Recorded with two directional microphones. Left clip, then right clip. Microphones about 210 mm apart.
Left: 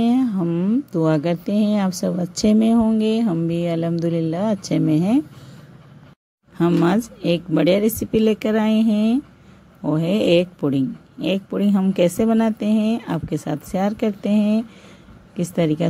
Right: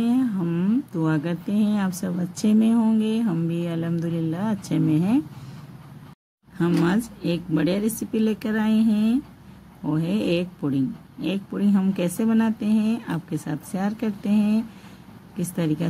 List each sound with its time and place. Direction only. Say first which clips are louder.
0.0 s speech: left 4 dB; 25° left (ahead or behind)
6.6 s speech: left 5 dB; 20° left (ahead or behind)